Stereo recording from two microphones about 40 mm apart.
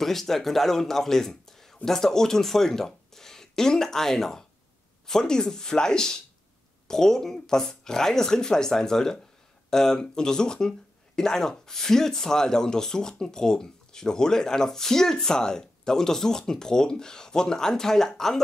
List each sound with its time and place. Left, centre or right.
0.0 s speech: centre